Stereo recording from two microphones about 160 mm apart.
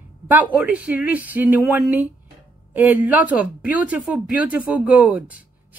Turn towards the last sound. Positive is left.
turn(degrees=-10)  # may be behind; listen again after turning